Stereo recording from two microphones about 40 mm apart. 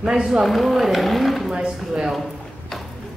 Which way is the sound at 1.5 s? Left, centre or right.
Centre.